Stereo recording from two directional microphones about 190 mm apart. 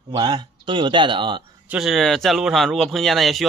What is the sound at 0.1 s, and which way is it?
Speech, 25° right (ahead or behind).